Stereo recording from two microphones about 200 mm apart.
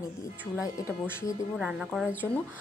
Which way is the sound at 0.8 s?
15° left (ahead or behind).